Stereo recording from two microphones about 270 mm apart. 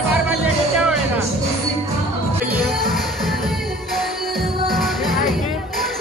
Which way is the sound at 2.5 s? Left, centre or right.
Centre.